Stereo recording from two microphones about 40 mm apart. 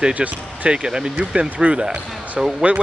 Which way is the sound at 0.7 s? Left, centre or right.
Right.